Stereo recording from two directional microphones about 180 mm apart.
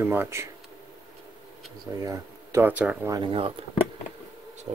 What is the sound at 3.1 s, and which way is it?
Speech, 25° right (ahead or behind).